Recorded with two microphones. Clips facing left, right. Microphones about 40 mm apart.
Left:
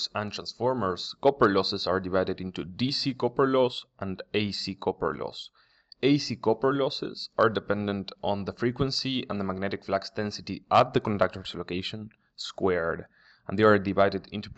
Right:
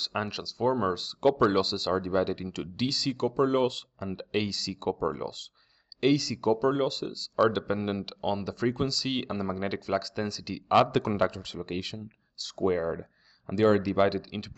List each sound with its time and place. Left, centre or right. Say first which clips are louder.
0.0 s speech: even; centre
1.4 s speech: left 1 dB; centre
5.9 s speech: left 1 dB; centre
11.4 s speech: left 2 dB; left
13.9 s speech: left 1 dB; centre